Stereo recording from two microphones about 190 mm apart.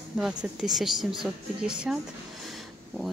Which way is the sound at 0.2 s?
5° right (ahead or behind).